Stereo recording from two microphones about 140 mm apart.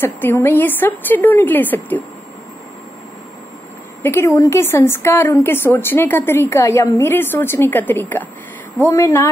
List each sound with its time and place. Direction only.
0.0 s a woman's voice: 15° left (ahead or behind)
4.0 s a woman's voice: 20° left (ahead or behind)